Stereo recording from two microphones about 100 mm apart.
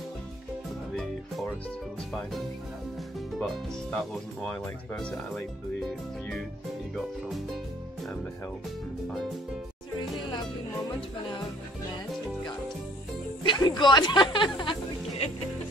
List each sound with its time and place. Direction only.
3.3 s speech: 5° left (ahead or behind)
13.5 s speech: 45° left (ahead or behind)